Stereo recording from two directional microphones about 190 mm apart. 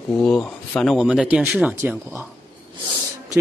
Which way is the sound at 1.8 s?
15° right (ahead or behind).